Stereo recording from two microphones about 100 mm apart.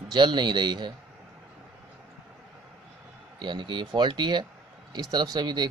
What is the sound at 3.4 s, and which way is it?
Speech, 50° right (ahead or behind).